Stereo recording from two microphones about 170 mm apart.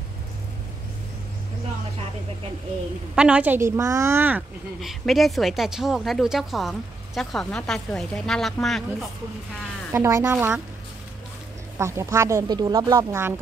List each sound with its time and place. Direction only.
3.2 s speech: 5° right (ahead or behind)
4.8 s a woman's voice: centre (ahead or behind)
9.9 s speech: 15° right (ahead or behind)
11.8 s speech: 15° right (ahead or behind)